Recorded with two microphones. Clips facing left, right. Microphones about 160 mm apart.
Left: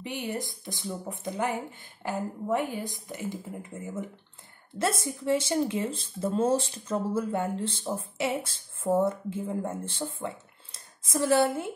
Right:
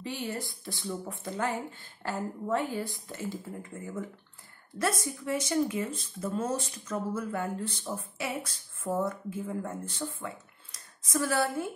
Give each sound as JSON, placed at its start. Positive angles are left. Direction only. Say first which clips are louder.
{"t": 0.0, "sound": "a woman's voice", "louder": "left 2 dB", "side_deg": 15}